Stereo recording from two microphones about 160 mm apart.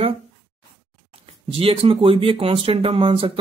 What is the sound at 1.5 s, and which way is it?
Speech, 35° right (ahead or behind).